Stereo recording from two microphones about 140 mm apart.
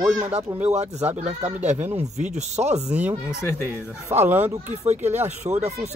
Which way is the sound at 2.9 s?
10° right (ahead or behind).